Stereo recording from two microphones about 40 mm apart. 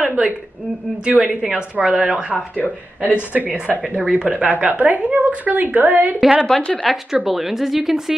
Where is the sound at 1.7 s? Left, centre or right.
Right.